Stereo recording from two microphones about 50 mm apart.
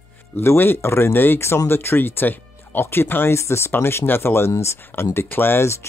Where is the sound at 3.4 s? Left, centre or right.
Left.